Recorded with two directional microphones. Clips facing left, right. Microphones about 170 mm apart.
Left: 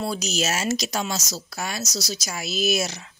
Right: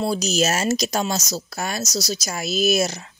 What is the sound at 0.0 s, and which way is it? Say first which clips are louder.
Speech: right 5 dB; 35° right (ahead or behind).